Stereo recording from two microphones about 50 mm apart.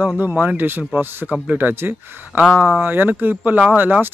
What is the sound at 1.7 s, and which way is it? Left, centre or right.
Speech, right.